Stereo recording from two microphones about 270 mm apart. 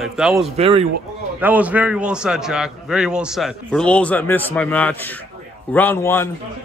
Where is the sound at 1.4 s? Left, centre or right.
Centre.